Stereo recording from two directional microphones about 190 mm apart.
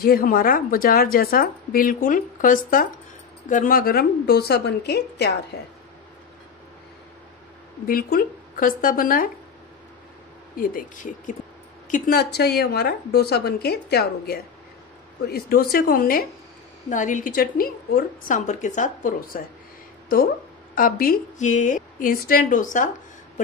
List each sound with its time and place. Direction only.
0.0 s a woman's voice: 50° left (ahead or behind)
7.8 s a woman's voice: 50° left (ahead or behind)
10.5 s a woman's voice: 50° left (ahead or behind)
20.7 s a woman's voice: 50° left (ahead or behind)